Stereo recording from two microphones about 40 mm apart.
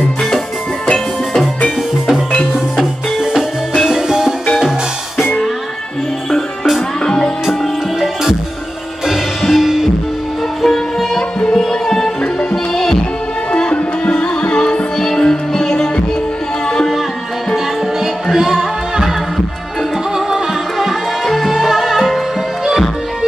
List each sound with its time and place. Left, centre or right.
3.8 s music: centre
7.1 s music: centre
7.4 s music: centre
10.6 s music: centre
11.3 s music: centre
13.5 s music: left
15.0 s music: centre
18.3 s music: centre